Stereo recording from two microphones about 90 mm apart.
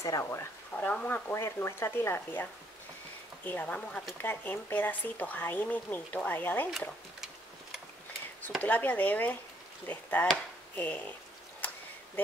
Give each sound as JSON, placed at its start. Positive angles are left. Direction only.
{"t": 0.0, "sound": "speech", "side_deg": 30}
{"t": 0.7, "sound": "speech", "side_deg": 15}
{"t": 1.3, "sound": "speech", "side_deg": 30}
{"t": 3.4, "sound": "speech", "side_deg": 20}
{"t": 8.6, "sound": "speech", "side_deg": 20}